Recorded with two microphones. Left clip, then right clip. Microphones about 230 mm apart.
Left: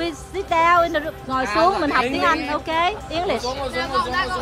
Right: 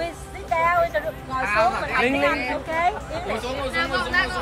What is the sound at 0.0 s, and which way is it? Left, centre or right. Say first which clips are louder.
Music: left 4 dB; left.